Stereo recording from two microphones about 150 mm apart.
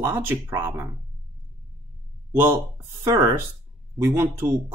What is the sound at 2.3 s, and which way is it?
Speech, 15° right (ahead or behind).